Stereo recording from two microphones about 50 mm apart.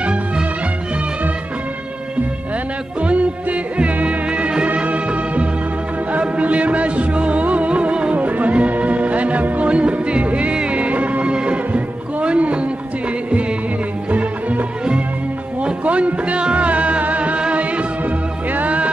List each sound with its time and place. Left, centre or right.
3.0 s music: right
15.6 s music: right